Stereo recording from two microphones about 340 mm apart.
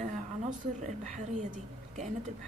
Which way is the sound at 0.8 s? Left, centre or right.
Right.